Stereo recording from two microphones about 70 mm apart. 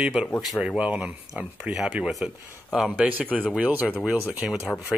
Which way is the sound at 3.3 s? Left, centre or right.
Centre.